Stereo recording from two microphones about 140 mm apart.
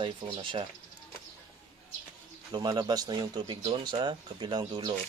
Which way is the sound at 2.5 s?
35° right (ahead or behind).